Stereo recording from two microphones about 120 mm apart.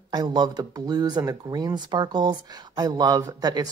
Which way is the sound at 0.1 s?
35° right (ahead or behind).